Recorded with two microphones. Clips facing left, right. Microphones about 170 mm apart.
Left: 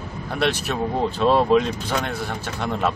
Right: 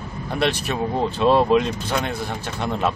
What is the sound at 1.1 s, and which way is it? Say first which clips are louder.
Speech: right 1 dB; 10° right (ahead or behind).